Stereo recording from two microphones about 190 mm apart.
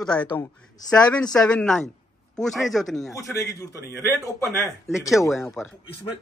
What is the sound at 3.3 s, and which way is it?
Speech, 15° left (ahead or behind).